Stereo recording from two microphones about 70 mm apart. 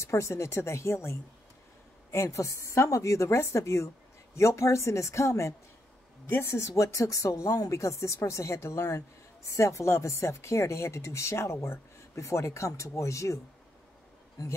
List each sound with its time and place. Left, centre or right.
0.0 s a woman's voice: left